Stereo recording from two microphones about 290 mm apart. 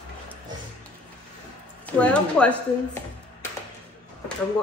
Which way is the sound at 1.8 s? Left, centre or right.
Centre.